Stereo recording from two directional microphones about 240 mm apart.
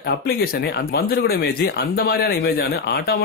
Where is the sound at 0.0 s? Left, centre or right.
Left.